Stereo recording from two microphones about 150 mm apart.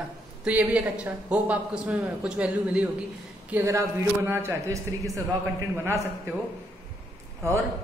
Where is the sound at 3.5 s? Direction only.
20° right (ahead or behind).